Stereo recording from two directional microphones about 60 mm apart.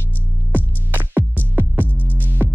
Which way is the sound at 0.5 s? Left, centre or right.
Right.